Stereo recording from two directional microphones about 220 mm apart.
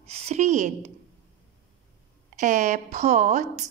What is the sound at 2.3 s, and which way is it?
A woman's voice, 35° right (ahead or behind).